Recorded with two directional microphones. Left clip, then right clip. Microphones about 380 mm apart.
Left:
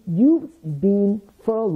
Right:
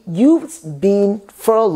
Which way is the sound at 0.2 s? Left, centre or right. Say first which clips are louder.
Right 5 dB; centre.